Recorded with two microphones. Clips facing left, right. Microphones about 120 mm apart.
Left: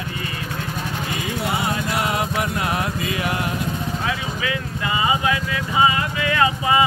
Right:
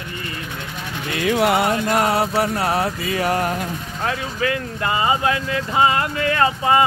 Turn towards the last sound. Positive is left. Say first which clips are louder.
# right 2 dB
turn(degrees=-45)  # may be behind; listen again after turning